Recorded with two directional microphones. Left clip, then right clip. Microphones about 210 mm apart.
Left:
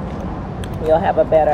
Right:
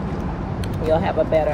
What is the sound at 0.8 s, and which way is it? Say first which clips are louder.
Speech: left 5 dB; 10° left (ahead or behind).